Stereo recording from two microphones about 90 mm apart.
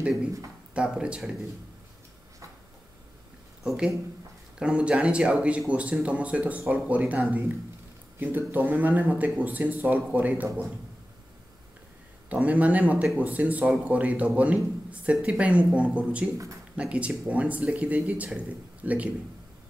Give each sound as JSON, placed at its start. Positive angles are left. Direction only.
{"t": 0.7, "sound": "a man's voice", "side_deg": -10}
{"t": 3.6, "sound": "a man's voice", "side_deg": -5}
{"t": 12.3, "sound": "a man's voice", "side_deg": -15}